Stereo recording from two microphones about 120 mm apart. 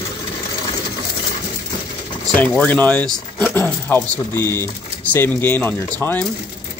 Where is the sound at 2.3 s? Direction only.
10° left (ahead or behind).